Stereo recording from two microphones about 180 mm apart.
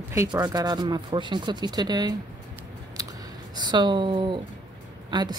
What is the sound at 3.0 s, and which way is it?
Scissors, 20° right (ahead or behind).